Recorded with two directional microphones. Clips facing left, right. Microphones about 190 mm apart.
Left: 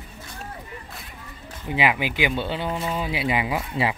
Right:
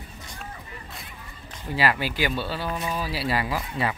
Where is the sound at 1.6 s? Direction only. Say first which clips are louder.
Left 2 dB; 15° left (ahead or behind).